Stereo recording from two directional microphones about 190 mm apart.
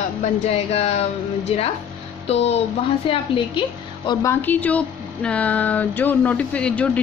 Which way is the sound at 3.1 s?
25° left (ahead or behind).